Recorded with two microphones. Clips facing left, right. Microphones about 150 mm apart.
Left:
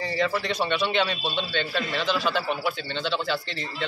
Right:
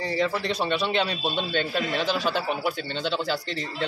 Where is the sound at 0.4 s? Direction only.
35° right (ahead or behind).